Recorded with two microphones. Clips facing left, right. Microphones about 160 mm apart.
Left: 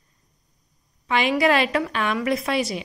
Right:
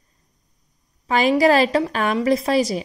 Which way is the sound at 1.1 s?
40° right (ahead or behind).